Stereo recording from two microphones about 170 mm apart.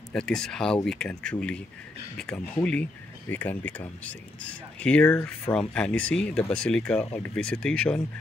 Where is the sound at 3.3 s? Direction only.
10° left (ahead or behind).